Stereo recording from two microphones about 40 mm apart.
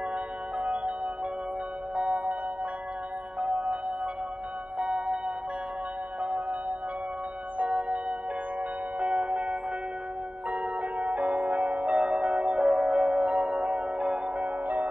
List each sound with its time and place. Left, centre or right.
0.6 s music: right
3.3 s music: right
7.5 s music: right
9.0 s singing bowl: right
10.5 s music: right
12.0 s singing bowl: right